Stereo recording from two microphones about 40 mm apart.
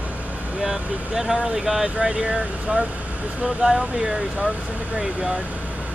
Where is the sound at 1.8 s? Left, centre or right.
Right.